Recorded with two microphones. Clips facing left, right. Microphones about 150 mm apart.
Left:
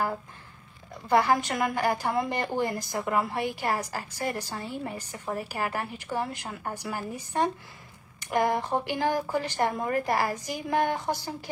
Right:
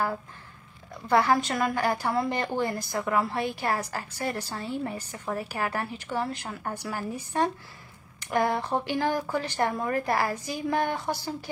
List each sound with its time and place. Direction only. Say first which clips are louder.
1.0 s a woman's voice: even; 15° left (ahead or behind)